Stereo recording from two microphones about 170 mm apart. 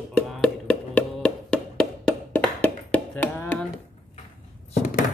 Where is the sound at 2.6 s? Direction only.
10° left (ahead or behind).